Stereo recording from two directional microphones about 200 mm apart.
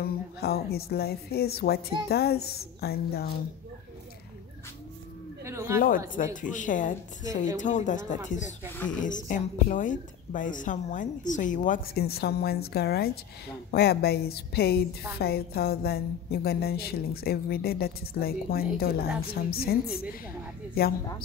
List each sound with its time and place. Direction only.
0.0 s a woman's voice: 50° left (ahead or behind)
5.4 s chatter: 15° right (ahead or behind)
5.8 s a woman's voice: 45° left (ahead or behind)